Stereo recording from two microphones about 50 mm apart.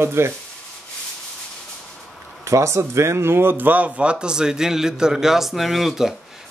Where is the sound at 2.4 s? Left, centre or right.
Right.